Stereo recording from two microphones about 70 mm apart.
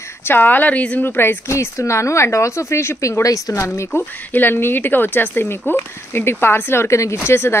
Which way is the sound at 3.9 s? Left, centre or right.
Left.